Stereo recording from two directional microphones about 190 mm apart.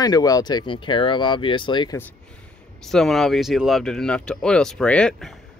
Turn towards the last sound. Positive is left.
turn(degrees=5)  # may be behind; listen again after turning